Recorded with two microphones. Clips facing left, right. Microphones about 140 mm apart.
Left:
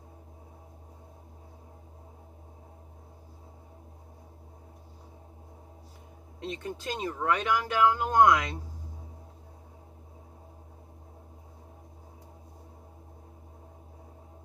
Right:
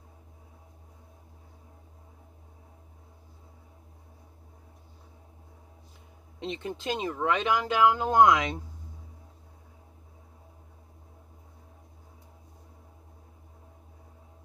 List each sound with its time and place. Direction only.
6.4 s speech: 25° right (ahead or behind)